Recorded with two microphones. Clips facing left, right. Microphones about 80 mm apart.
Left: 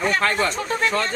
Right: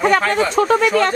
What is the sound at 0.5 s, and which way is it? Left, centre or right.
Speech, right.